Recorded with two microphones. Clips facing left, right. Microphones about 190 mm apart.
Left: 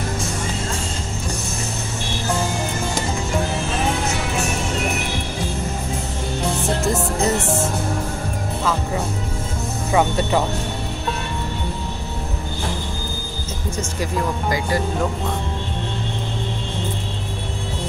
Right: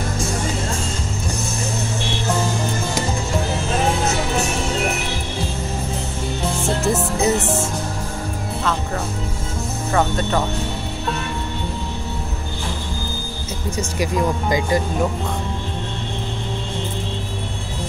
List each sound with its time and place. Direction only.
6.9 s music: 10° right (ahead or behind)
9.9 s speech: 10° left (ahead or behind)
14.5 s speech: 20° right (ahead or behind)